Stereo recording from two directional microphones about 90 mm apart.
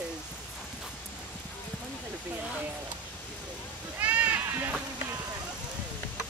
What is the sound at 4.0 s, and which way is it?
Sheep, 20° right (ahead or behind).